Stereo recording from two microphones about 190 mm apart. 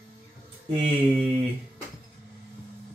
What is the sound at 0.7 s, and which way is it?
Speech, 30° right (ahead or behind).